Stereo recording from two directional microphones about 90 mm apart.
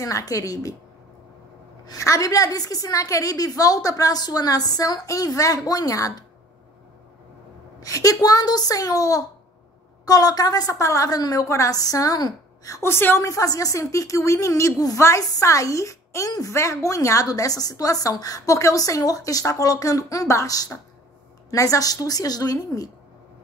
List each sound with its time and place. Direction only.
0.0 s a woman's voice: 40° left (ahead or behind)
1.9 s a woman's voice: 40° left (ahead or behind)
7.8 s a woman's voice: 40° left (ahead or behind)
12.8 s a woman's voice: 25° left (ahead or behind); by 22.8 s 45° left (ahead or behind)